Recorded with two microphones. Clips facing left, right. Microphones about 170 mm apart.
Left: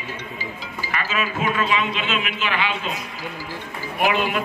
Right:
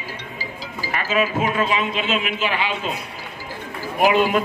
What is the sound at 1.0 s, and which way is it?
A man's voice, 40° right (ahead or behind).